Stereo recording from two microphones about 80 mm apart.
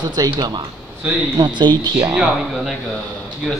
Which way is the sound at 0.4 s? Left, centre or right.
Right.